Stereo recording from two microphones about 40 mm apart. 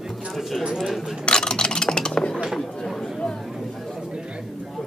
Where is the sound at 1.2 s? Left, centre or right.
Left.